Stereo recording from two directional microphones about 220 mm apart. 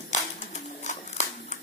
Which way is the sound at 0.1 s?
30° left (ahead or behind).